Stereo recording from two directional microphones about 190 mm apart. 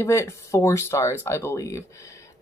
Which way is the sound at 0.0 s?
15° left (ahead or behind).